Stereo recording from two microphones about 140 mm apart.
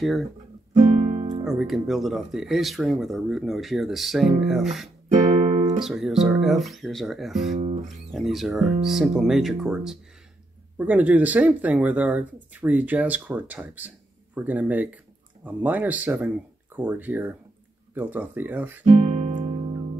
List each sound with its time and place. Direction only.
0.7 s music: 70° right (ahead or behind)
1.4 s speech: centre (ahead or behind)
5.1 s music: 55° right (ahead or behind)
5.8 s speech: 5° right (ahead or behind)
7.5 s guitar: 50° right (ahead or behind)
8.1 s speech: centre (ahead or behind)
18.9 s guitar: 50° right (ahead or behind)
19.3 s music: 40° right (ahead or behind)